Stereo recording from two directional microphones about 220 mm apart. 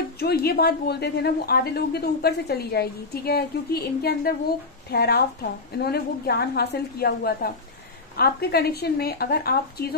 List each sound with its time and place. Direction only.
0.2 s speech: 45° left (ahead or behind)